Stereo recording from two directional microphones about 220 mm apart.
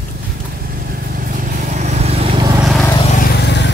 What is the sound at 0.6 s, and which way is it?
Vehicle, 40° right (ahead or behind).